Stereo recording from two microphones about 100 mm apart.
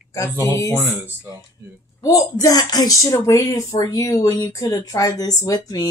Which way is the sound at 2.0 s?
35° left (ahead or behind).